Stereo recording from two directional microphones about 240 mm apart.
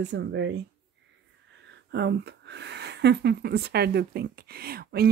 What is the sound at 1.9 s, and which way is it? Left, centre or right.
Speech, right.